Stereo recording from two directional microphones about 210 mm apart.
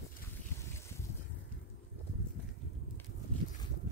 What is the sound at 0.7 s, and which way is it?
Boat, 10° left (ahead or behind).